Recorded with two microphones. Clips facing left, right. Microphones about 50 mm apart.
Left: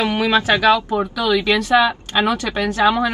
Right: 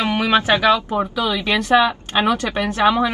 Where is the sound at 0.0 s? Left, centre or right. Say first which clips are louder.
Even; right.